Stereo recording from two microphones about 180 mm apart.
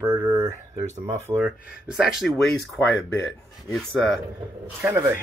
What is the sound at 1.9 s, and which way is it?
Speech, centre (ahead or behind).